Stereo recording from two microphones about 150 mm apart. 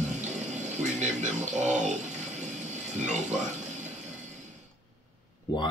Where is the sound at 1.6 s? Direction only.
50° right (ahead or behind).